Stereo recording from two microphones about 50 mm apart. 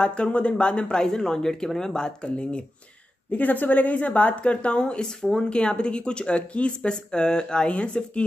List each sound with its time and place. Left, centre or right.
0.0 s speech: left
3.3 s speech: left